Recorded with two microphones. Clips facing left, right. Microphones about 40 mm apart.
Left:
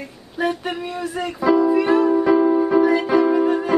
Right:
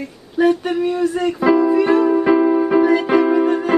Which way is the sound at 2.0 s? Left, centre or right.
Right.